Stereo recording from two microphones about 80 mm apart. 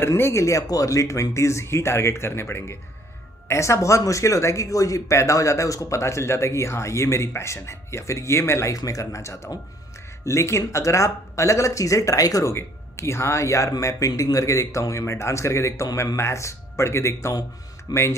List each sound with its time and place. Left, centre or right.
0.0 s speech: left
12.5 s speech: left
17.9 s speech: left